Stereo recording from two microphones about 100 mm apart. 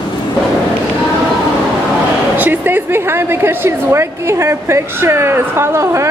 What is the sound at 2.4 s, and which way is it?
A woman's voice, 20° right (ahead or behind).